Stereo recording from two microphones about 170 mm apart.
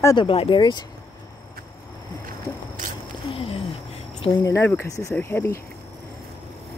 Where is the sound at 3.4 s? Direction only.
35° left (ahead or behind).